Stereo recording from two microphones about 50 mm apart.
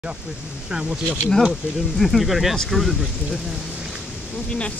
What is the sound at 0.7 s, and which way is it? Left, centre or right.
Speech, centre.